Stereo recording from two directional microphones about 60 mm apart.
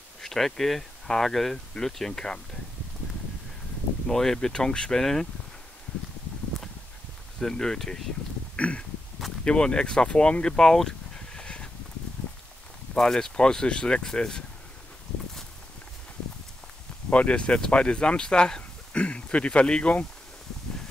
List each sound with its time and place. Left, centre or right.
0.2 s speech: centre
4.1 s speech: centre
7.3 s speech: centre
8.5 s a sound: centre
9.4 s speech: centre
12.9 s speech: centre
17.1 s speech: left